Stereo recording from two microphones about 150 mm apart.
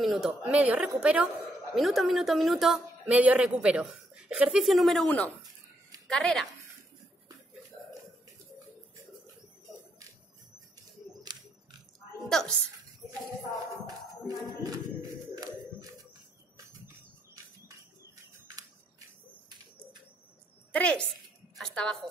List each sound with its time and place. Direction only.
0.0 s a sound: centre (ahead or behind)
0.3 s a woman's voice: 10° right (ahead or behind)
12.3 s a woman's voice: centre (ahead or behind)
13.0 s music: 15° left (ahead or behind)
13.5 s music: 25° right (ahead or behind)
20.7 s a woman's voice: 5° left (ahead or behind)